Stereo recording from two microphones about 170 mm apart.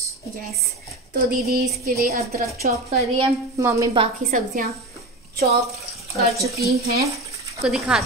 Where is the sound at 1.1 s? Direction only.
65° right (ahead or behind).